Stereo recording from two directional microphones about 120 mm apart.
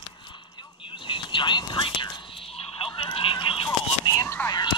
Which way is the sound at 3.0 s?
45° left (ahead or behind).